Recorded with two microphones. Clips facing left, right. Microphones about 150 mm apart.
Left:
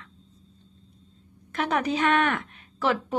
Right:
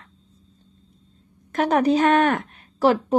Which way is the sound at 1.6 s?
40° right (ahead or behind).